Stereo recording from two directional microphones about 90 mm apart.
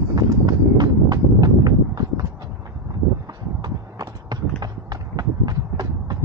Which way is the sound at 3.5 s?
50° right (ahead or behind).